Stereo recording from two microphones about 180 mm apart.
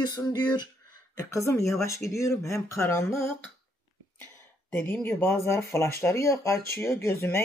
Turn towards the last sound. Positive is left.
turn(degrees=15)  # may be behind; listen again after turning